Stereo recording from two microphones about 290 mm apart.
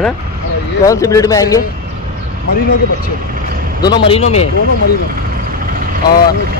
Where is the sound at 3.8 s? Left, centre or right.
Centre.